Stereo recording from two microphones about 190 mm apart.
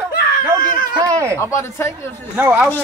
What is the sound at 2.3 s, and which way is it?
Speech, 10° right (ahead or behind).